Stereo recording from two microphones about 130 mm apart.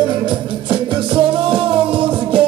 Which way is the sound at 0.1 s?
40° right (ahead or behind).